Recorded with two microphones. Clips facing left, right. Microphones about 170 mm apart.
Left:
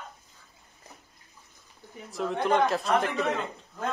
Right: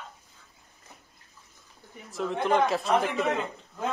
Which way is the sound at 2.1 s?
Centre (ahead or behind).